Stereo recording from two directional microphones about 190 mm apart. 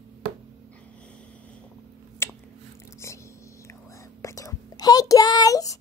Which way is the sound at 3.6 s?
15° left (ahead or behind).